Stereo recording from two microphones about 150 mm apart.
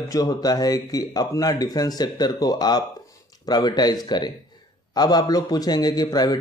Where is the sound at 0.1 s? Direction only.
25° left (ahead or behind).